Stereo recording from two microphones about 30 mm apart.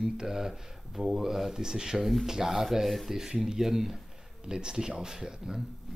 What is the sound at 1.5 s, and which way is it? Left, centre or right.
Speech, right.